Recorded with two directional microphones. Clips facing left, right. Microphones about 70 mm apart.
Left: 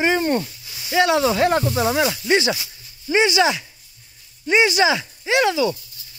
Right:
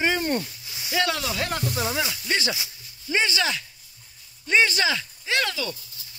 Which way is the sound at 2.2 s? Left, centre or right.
Left.